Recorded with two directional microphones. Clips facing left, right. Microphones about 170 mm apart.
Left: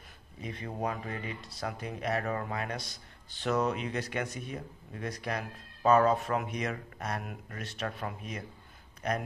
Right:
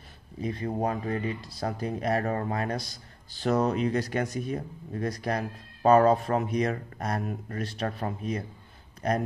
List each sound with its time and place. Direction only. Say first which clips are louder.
0.4 s speech: right 7 dB; 35° right (ahead or behind)